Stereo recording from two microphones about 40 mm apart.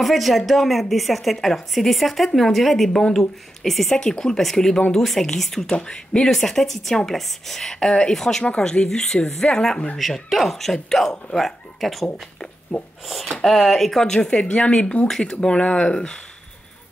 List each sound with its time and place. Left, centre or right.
0.0 s a woman's voice: centre
4.0 s a woman's voice: centre
5.7 s a woman's voice: left
8.5 s a woman's voice: left; by 12.1 s centre
12.7 s speech: left
13.0 s speech: centre
14.0 s speech: centre
15.0 s a woman's voice: centre